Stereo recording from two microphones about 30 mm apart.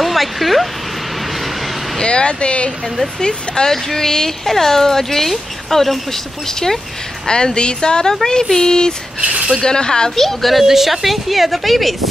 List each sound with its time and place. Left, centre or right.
0.0 s a sound: centre
2.0 s speech: left
3.2 s speech: left
7.2 s speech: left
9.2 s speech: right
9.6 s speech: left
10.1 s speech: centre
10.6 s speech: centre